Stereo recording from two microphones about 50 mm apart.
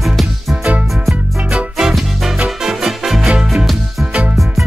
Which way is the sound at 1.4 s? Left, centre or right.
Right.